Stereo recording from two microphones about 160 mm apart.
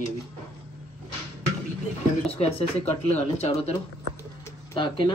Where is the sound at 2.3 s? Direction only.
40° left (ahead or behind).